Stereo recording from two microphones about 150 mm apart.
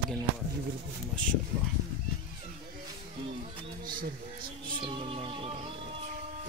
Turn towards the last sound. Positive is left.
turn(degrees=-35)  # may be behind; listen again after turning